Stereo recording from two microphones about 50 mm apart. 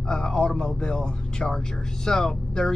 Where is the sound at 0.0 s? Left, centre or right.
Centre.